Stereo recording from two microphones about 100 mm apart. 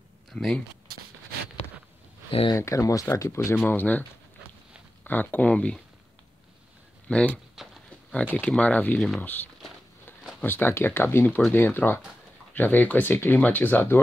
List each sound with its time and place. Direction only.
0.3 s speech: 5° left (ahead or behind)
2.5 s speech: 30° left (ahead or behind)
5.0 s speech: 20° left (ahead or behind)
7.1 s speech: 10° left (ahead or behind)
7.6 s pig: 5° right (ahead or behind)
8.4 s speech: 10° left (ahead or behind)